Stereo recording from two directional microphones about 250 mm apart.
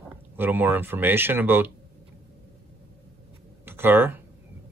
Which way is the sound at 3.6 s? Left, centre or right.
Centre.